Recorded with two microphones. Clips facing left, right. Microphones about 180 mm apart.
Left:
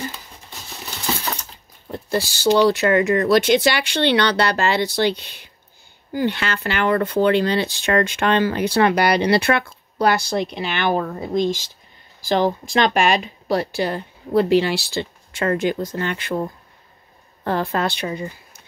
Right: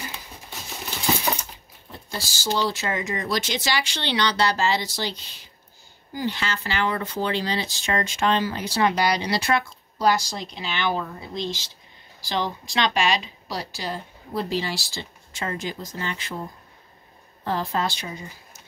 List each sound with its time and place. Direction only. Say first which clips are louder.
1.9 s speech: left 12 dB; 60° left (ahead or behind)
17.5 s speech: left 4 dB; 60° left (ahead or behind)